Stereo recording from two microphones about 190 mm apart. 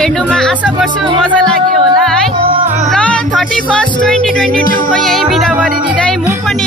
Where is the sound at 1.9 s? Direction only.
Centre (ahead or behind).